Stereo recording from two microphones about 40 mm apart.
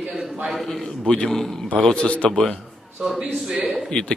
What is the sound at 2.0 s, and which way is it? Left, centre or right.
Speech, left.